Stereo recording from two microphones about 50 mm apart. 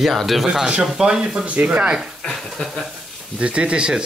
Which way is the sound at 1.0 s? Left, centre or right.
Centre.